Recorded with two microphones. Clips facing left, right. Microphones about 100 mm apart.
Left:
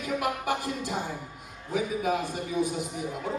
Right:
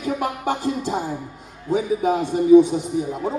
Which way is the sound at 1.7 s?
25° right (ahead or behind).